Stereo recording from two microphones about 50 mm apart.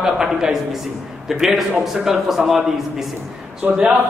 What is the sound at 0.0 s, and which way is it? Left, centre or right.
Speech, centre.